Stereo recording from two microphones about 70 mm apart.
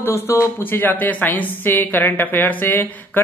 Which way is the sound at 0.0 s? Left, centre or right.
Left.